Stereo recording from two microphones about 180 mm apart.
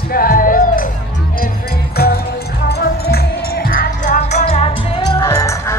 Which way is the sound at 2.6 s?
65° left (ahead or behind).